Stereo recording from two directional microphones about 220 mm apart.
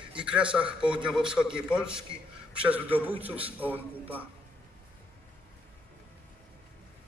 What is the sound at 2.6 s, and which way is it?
Speech, 5° right (ahead or behind).